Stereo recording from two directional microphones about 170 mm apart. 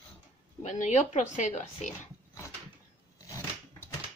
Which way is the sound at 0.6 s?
45° left (ahead or behind).